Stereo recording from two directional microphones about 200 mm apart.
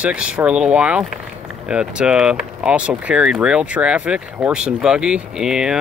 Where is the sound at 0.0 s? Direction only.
5° right (ahead or behind).